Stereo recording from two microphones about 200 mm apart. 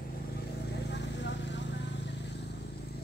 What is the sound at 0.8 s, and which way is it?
Vehicle, 60° left (ahead or behind).